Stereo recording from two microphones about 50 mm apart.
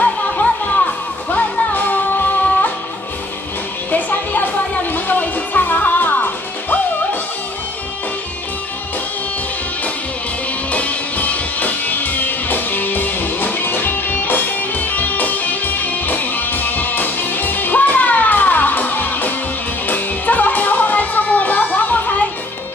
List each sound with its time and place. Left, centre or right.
0.2 s music: left
3.9 s music: left
10.7 s music: left